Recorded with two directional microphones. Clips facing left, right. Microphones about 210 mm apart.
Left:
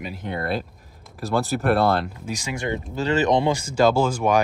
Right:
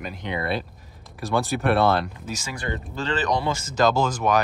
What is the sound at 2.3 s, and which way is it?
Speech, 15° left (ahead or behind).